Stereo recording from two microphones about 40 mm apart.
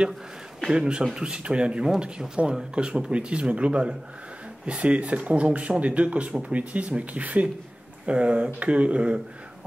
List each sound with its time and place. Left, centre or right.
0.6 s a man's voice: right